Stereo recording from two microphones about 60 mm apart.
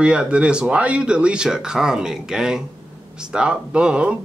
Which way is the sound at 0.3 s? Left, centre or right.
Centre.